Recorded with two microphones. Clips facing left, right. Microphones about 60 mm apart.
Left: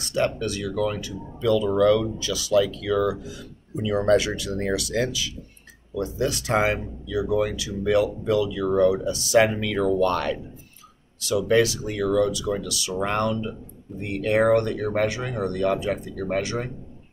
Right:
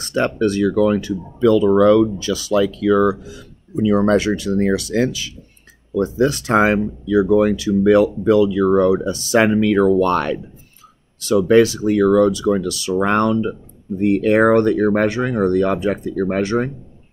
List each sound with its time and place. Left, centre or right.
0.2 s speech: right
2.0 s speech: right